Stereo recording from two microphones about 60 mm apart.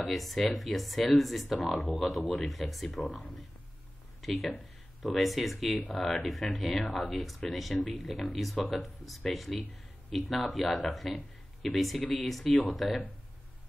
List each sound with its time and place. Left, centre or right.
0.0 s speech: centre
1.8 s speech: left
2.3 s speech: centre
4.2 s speech: centre